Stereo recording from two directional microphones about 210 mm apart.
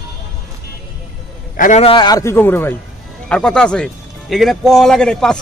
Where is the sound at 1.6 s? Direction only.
30° left (ahead or behind).